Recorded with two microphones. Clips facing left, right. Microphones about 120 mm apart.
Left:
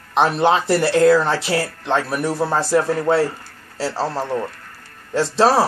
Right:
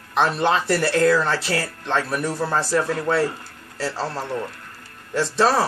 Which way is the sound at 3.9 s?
40° left (ahead or behind).